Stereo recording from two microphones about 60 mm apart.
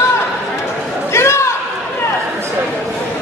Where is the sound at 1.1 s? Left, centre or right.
Left.